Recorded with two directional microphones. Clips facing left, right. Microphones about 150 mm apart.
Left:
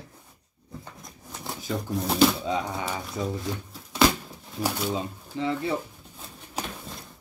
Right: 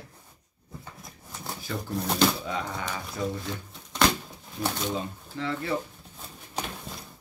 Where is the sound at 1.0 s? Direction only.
Centre (ahead or behind).